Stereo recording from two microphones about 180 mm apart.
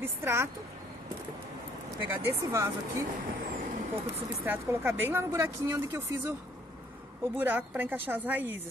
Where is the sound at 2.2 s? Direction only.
15° right (ahead or behind).